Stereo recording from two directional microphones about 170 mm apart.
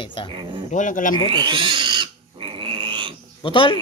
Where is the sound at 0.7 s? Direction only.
50° left (ahead or behind).